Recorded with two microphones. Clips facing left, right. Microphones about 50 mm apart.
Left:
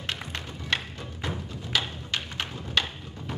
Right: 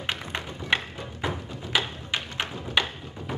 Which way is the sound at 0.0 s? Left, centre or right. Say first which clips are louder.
Right 3 dB; centre.